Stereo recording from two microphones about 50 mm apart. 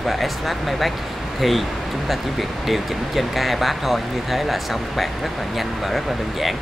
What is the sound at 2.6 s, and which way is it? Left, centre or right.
Speech, centre.